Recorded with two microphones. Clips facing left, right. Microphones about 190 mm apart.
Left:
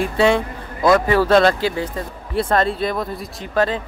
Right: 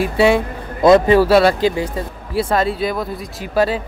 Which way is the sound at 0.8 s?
25° right (ahead or behind).